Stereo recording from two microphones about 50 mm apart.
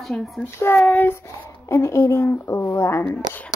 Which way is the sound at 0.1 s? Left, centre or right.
Left.